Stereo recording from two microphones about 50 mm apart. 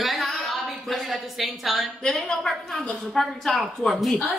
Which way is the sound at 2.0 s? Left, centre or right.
Centre.